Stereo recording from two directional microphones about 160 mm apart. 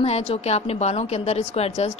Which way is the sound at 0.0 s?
40° left (ahead or behind).